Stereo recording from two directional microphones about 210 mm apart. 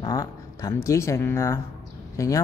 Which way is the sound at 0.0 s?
15° left (ahead or behind).